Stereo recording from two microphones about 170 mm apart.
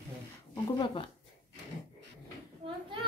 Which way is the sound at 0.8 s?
30° left (ahead or behind).